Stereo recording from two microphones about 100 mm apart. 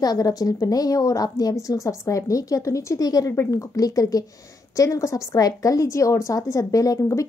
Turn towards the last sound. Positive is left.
turn(degrees=30)  # may be behind; listen again after turning